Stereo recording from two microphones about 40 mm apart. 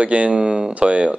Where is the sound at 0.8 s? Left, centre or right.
Right.